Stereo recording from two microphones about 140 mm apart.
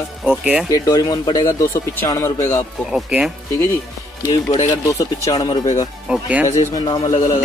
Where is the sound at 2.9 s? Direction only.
5° right (ahead or behind).